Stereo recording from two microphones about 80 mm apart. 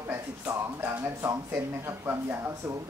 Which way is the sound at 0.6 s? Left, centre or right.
Right.